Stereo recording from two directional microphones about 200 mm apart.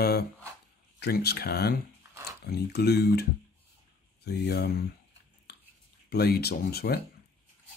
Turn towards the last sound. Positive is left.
turn(degrees=50)  # may be behind; listen again after turning